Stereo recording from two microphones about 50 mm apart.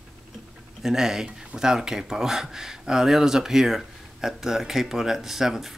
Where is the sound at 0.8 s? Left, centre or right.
Centre.